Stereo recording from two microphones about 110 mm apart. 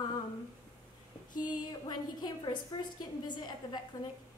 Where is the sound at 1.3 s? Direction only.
40° left (ahead or behind).